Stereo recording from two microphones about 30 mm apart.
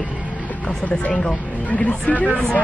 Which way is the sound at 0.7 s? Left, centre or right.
Left.